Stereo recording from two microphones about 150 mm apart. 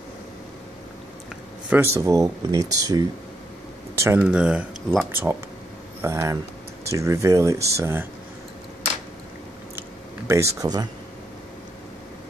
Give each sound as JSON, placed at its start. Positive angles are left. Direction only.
{"t": 2.0, "sound": "speech", "side_deg": -20}
{"t": 10.2, "sound": "speech", "side_deg": -20}